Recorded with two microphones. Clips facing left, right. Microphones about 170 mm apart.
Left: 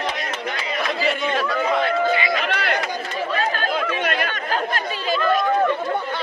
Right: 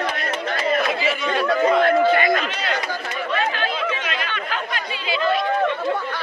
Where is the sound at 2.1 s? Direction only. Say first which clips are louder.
Right 4 dB; 50° right (ahead or behind).